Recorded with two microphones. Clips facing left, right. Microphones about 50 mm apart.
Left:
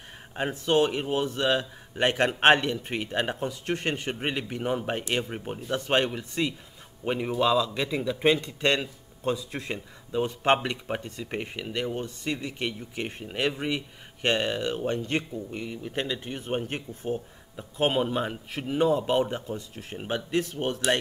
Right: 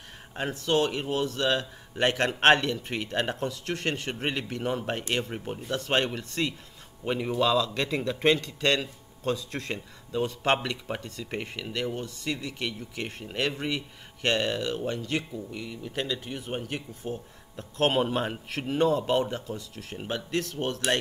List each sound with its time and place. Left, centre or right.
0.3 s speech: centre
5.7 s speech: centre
8.4 s speech: left
17.6 s speech: centre
17.9 s a man's voice: centre
18.7 s speech: centre